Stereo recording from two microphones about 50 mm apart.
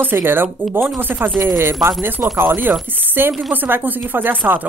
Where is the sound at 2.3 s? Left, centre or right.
Right.